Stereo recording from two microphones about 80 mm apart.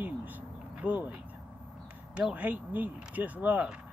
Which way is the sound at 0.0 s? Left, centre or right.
Right.